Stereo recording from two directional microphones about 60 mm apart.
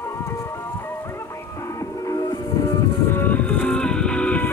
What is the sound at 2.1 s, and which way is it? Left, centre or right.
Music, left.